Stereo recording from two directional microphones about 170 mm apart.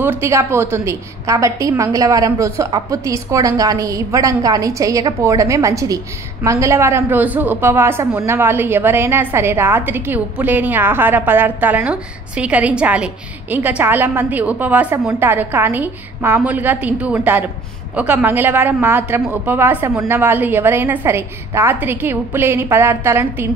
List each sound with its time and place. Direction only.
0.0 s a woman's voice: 15° right (ahead or behind)